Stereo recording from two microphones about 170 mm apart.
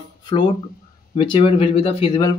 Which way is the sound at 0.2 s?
30° left (ahead or behind).